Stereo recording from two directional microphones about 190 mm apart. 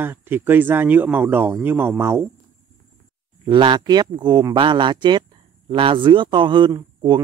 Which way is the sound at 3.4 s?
25° right (ahead or behind).